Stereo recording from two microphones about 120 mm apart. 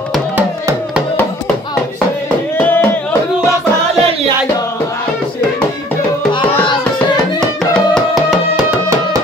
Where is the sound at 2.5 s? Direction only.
15° left (ahead or behind).